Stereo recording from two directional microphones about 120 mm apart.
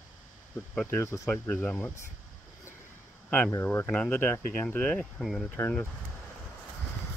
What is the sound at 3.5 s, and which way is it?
Speech, 20° left (ahead or behind).